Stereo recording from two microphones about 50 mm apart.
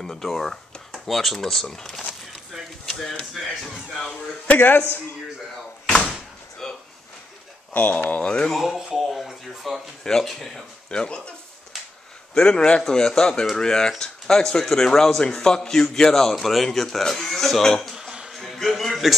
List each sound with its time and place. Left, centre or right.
0.0 s speech: centre
4.6 s speech: left
6.6 s a sound: centre
8.1 s speech: left
8.5 s speech: centre
8.7 s speech: centre
10.9 s speech: centre
12.4 s speech: centre
17.9 s a sound: centre
18.3 s a man's voice: centre